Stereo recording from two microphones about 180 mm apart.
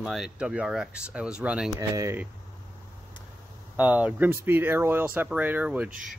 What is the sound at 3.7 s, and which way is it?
Speech, 10° right (ahead or behind).